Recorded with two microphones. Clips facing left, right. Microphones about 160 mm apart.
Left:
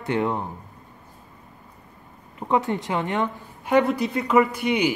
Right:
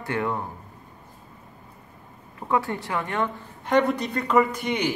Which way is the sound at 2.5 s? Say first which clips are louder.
Left 2 dB; 20° left (ahead or behind).